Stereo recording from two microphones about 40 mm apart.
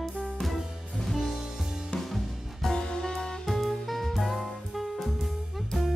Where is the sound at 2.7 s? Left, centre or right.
Centre.